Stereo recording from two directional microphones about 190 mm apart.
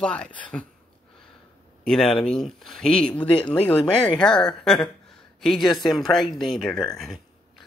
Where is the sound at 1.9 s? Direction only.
Centre (ahead or behind).